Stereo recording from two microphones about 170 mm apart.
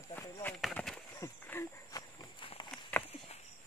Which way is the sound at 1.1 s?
15° left (ahead or behind).